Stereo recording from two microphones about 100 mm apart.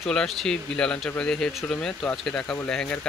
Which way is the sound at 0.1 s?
5° left (ahead or behind).